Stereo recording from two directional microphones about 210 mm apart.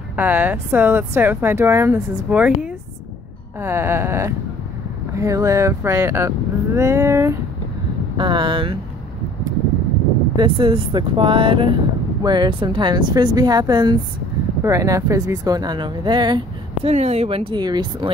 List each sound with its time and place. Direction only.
0.1 s speech: 10° right (ahead or behind); by 8.7 s 25° right (ahead or behind)
10.3 s speech: 25° right (ahead or behind)
16.9 s speech: 30° right (ahead or behind)